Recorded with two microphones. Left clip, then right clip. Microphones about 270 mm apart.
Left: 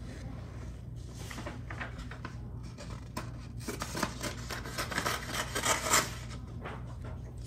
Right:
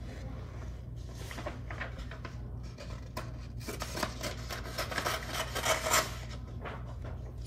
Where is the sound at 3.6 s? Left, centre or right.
Left.